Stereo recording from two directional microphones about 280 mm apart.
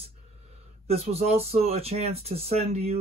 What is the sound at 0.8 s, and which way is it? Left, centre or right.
Speech, right.